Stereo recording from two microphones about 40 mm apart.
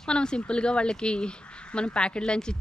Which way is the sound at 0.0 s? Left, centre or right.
Left.